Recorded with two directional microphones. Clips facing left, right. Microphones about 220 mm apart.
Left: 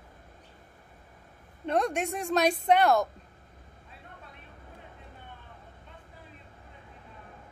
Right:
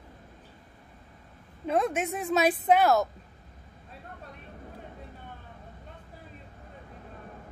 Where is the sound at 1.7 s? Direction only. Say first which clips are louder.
Right 1 dB; 5° right (ahead or behind).